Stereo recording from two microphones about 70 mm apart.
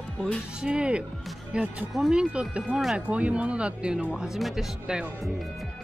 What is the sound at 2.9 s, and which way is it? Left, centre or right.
Speech, centre.